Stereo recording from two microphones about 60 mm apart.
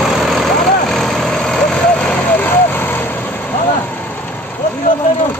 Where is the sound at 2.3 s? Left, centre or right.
Left.